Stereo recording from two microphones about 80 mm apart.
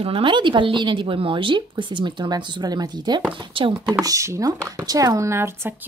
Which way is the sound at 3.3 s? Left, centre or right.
Right.